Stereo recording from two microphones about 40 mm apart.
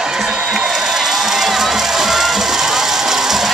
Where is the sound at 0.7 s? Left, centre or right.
Centre.